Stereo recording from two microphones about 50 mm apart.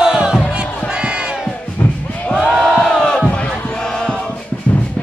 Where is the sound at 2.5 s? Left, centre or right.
Centre.